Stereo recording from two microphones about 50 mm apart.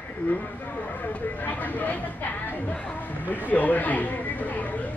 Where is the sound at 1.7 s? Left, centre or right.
Left.